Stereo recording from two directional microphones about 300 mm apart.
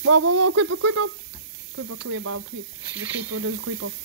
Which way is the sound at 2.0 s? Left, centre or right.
Right.